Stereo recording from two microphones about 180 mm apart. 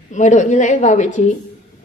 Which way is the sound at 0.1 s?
40° left (ahead or behind).